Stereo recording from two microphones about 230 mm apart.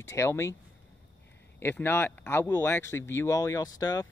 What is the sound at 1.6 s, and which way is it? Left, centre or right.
Speech, centre.